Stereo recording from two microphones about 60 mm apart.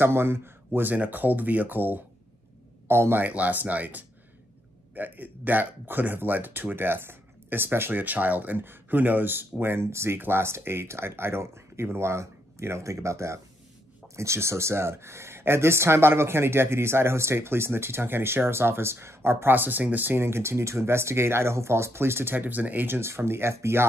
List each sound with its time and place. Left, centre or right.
0.0 s speech: right
0.9 s speech: right
2.9 s speech: right
3.2 s speech: right
8.0 s speech: right
20.2 s speech: right
22.9 s speech: right